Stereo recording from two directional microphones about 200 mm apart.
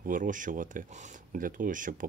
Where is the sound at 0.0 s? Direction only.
40° right (ahead or behind).